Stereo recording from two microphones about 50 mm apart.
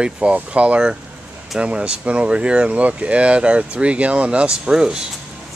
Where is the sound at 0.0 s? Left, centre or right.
Right.